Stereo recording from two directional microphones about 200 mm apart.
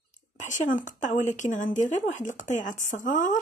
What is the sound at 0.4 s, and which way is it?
A woman's voice, 40° left (ahead or behind).